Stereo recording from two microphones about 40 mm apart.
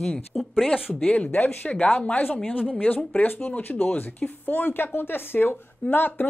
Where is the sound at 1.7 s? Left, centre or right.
Left.